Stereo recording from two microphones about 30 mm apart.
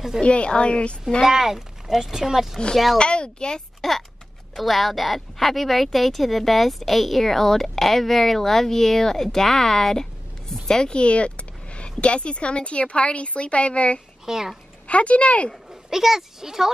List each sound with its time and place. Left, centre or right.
0.2 s speech: left
1.2 s speech: centre
3.0 s speech: left
3.8 s speech: centre
4.6 s speech: centre
10.5 s a sound: centre
10.9 s speech: left
14.2 s speech: centre
14.9 s speech: left
15.9 s speech: centre